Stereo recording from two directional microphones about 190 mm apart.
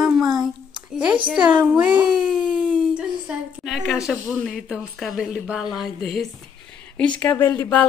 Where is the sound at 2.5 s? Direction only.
5° right (ahead or behind).